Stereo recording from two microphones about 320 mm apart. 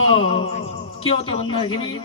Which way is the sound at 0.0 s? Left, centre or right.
Centre.